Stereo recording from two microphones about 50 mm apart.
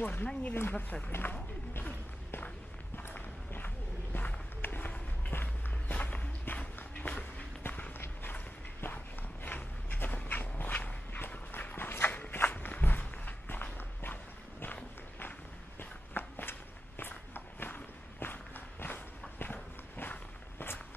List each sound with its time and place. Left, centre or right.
0.0 s speech: left
1.1 s speech: left
3.0 s run: left
4.6 s a sound: left
5.3 s walk: left
8.0 s run: left
8.8 s a sound: left
11.1 s clip-clop: left
11.7 s walk: left
15.8 s walk: left